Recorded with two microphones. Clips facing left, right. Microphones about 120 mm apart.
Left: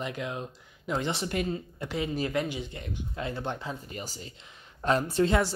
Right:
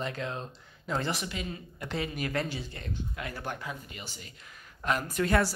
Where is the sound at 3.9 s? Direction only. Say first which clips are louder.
Left 6 dB; 40° left (ahead or behind); by 5.5 s 25° left (ahead or behind).